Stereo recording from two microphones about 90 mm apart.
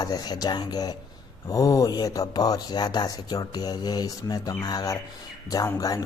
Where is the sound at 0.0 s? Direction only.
50° left (ahead or behind).